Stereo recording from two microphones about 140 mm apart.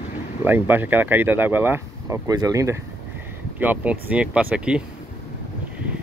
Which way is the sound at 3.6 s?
10° right (ahead or behind).